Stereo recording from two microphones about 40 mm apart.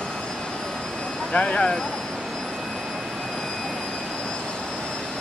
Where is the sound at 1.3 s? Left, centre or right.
Left.